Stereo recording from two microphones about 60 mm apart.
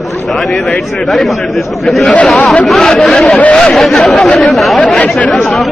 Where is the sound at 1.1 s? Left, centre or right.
Centre.